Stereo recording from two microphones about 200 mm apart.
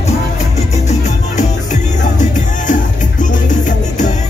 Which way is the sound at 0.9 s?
35° left (ahead or behind).